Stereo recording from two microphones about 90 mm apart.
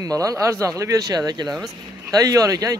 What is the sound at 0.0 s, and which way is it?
Speech, 40° right (ahead or behind).